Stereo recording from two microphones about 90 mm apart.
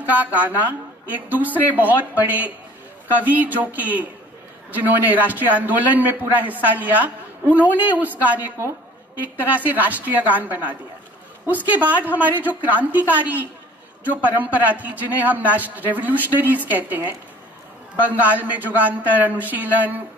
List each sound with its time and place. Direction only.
0.1 s a man's voice: 20° right (ahead or behind)